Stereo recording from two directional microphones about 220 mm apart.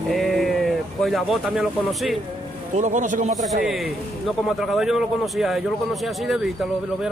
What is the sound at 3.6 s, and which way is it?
A man's voice, centre (ahead or behind).